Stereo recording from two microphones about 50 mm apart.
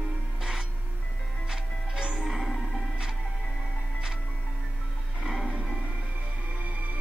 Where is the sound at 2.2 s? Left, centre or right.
Centre.